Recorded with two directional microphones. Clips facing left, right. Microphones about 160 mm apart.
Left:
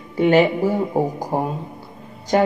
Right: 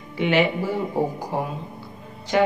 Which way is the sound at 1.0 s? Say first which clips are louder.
Left 3 dB; 45° left (ahead or behind).